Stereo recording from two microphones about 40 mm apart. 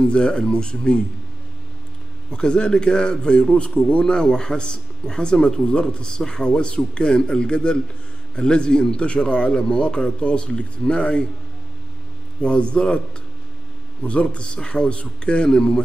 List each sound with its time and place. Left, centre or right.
0.0 s speech: left
2.3 s a man's voice: left
4.0 s speech: centre
12.4 s speech: left
14.0 s speech: left